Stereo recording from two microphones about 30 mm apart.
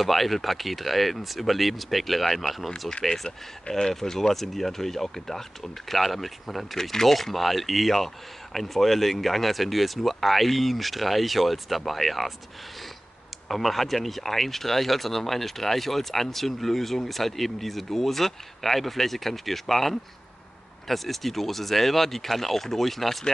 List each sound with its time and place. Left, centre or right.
0.0 s speech: centre
3.3 s speech: left
3.9 s speech: centre
6.8 s speech: centre
7.2 s speech: centre
13.5 s speech: centre